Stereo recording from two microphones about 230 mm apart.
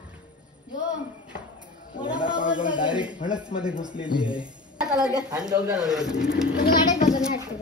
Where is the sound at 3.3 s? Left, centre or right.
Centre.